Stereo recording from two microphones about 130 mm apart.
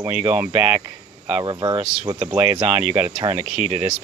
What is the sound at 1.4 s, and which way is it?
Speech, 35° right (ahead or behind).